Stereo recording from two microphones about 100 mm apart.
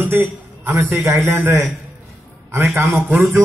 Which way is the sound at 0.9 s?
30° right (ahead or behind).